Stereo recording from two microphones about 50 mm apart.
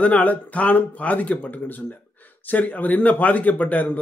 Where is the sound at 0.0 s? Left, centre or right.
Left.